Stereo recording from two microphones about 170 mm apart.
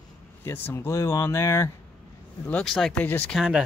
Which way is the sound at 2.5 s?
5° left (ahead or behind).